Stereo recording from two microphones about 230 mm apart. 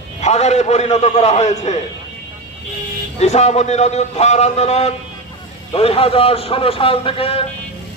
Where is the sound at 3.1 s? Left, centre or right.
Left.